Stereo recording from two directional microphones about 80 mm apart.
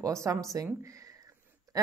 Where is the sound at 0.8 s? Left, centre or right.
Right.